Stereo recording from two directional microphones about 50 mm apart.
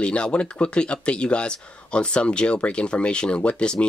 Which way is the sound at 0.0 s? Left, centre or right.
Left.